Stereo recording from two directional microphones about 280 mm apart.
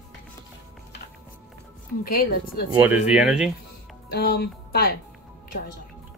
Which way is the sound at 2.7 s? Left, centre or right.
Centre.